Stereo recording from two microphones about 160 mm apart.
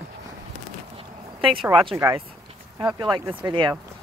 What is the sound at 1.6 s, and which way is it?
Speech, centre (ahead or behind).